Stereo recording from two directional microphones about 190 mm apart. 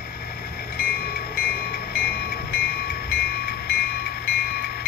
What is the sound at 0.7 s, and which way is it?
Train, 50° left (ahead or behind).